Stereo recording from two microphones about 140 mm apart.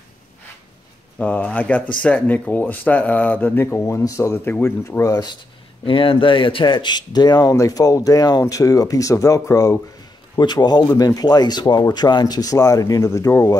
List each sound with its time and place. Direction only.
1.1 s speech: 10° left (ahead or behind)
5.9 s speech: 40° left (ahead or behind); by 13.6 s 20° left (ahead or behind)